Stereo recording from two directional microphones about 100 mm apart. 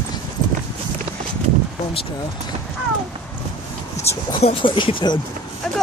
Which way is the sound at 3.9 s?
90° left.